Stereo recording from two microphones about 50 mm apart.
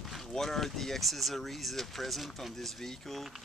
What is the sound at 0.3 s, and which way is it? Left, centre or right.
Speech, centre.